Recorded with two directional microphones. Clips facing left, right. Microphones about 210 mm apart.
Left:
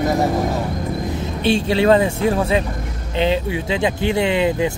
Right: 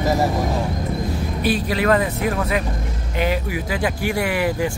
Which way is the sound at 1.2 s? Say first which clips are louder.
Left 4 dB; 25° left (ahead or behind).